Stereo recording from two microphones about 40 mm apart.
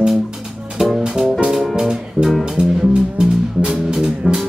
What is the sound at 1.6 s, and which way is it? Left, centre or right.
Music, centre.